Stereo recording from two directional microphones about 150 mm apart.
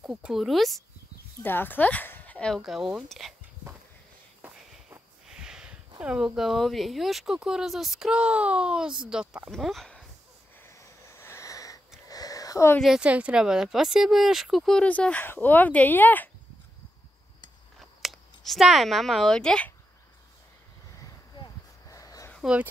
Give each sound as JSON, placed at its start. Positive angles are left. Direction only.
{"t": 0.0, "sound": "speech", "side_deg": -5}
{"t": 1.4, "sound": "speech", "side_deg": 15}
{"t": 4.4, "sound": "walk", "side_deg": -5}
{"t": 5.3, "sound": "a sound", "side_deg": -5}
{"t": 5.9, "sound": "speech", "side_deg": -5}
{"t": 10.6, "sound": "wheeze", "side_deg": 20}
{"t": 12.1, "sound": "a sound", "side_deg": 25}
{"t": 12.8, "sound": "speech", "side_deg": -5}
{"t": 17.7, "sound": "speech", "side_deg": 0}
{"t": 21.0, "sound": "a sound", "side_deg": 25}
{"t": 22.4, "sound": "speech", "side_deg": -5}